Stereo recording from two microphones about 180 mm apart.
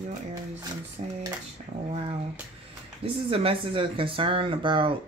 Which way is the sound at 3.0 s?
30° right (ahead or behind).